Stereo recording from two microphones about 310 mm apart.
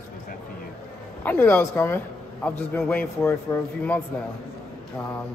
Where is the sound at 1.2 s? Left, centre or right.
Centre.